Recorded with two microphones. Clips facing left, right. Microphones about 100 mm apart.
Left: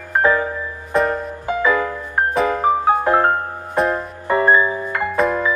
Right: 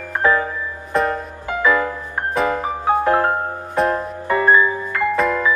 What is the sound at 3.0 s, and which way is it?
Music, 20° left (ahead or behind).